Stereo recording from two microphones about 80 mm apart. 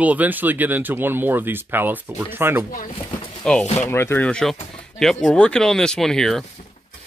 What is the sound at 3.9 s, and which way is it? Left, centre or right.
Speech, left.